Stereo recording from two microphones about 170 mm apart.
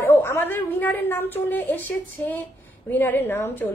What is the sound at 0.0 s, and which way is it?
A woman's voice, 15° left (ahead or behind).